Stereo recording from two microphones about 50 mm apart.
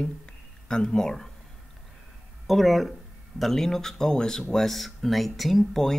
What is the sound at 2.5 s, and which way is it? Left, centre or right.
Speech, centre.